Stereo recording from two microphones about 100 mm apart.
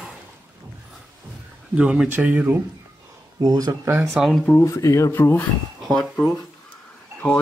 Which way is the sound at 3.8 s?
25° right (ahead or behind).